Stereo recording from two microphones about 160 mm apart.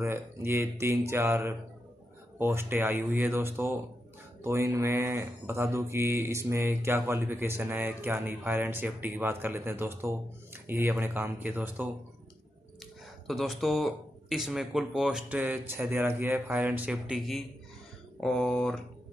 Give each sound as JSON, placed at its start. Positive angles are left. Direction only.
{"t": 0.0, "sound": "speech", "side_deg": -15}
{"t": 13.3, "sound": "speech", "side_deg": 0}